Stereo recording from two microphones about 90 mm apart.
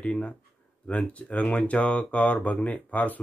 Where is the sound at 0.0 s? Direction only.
15° left (ahead or behind).